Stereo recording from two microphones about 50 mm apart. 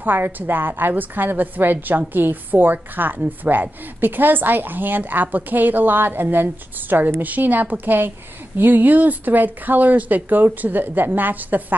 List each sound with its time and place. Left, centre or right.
0.0 s a woman's voice: right